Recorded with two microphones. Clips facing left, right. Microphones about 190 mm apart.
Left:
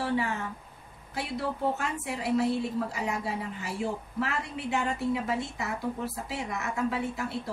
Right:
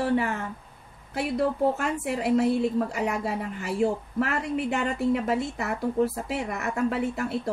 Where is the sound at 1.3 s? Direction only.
55° right (ahead or behind).